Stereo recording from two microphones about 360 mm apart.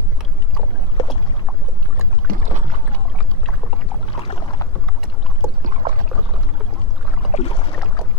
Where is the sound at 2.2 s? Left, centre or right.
Right.